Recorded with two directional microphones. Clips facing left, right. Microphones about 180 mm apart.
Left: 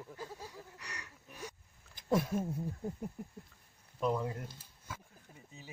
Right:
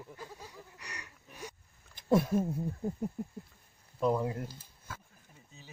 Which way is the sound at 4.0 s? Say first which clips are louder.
Right 4 dB; 35° right (ahead or behind).